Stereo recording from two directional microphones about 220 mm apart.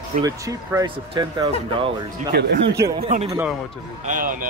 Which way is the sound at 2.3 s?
50° right (ahead or behind).